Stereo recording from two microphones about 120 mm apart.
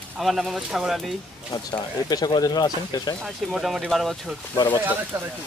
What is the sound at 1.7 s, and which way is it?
Speech, 35° left (ahead or behind).